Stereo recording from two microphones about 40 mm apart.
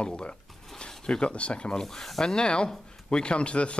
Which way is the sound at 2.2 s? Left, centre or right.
Left.